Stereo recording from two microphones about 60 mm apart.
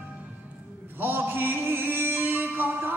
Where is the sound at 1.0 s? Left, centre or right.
Right.